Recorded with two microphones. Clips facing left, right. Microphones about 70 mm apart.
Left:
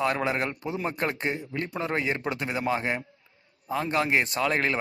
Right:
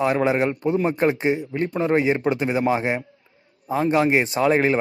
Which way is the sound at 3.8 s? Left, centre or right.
Centre.